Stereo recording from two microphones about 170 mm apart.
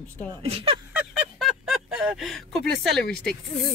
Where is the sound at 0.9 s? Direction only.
5° right (ahead or behind).